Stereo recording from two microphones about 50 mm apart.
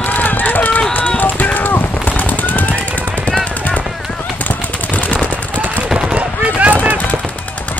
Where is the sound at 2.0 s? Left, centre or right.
Left.